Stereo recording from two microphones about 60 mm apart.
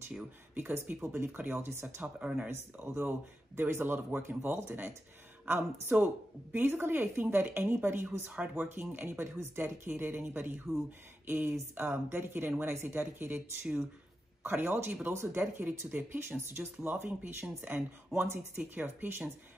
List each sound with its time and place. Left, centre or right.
0.6 s speech: right
2.1 s speech: centre
2.5 s speech: right
6.5 s speech: right